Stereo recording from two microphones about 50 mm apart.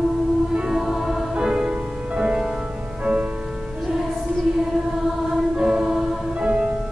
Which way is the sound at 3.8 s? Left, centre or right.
Centre.